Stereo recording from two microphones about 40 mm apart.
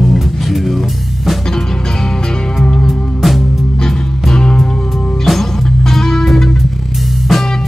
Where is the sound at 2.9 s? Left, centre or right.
Centre.